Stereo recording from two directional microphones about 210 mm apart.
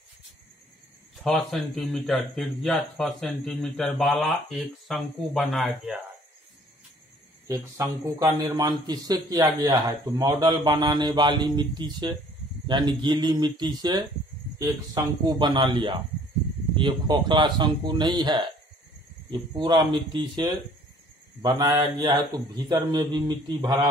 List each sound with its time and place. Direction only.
1.2 s speech: centre (ahead or behind)
7.4 s a man's voice: 15° right (ahead or behind)